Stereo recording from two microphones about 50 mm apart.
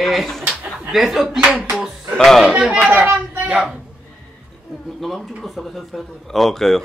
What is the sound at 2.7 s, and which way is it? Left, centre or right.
Speech, right.